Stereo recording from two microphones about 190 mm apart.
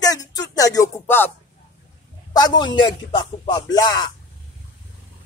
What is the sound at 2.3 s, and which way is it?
Speech, 20° left (ahead or behind).